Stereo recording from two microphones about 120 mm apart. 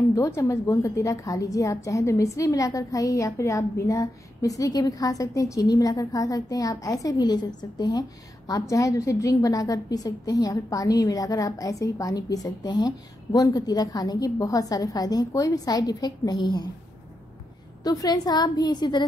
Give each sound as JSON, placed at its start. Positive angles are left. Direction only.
{"t": 0.1, "sound": "a woman's voice", "side_deg": 25}
{"t": 17.8, "sound": "a woman's voice", "side_deg": 30}